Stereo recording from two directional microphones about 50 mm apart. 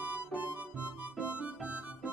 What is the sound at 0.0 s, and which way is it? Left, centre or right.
Music, right.